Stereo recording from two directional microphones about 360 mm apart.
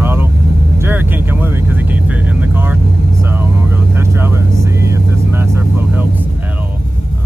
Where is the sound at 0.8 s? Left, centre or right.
Centre.